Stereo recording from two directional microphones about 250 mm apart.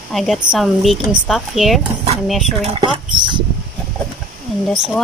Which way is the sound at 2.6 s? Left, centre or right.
Right.